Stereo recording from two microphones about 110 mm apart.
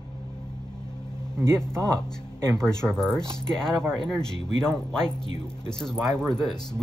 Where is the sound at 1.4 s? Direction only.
25° right (ahead or behind).